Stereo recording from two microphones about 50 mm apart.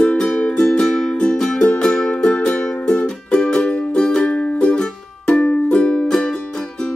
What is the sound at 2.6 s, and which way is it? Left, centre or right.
Music, centre.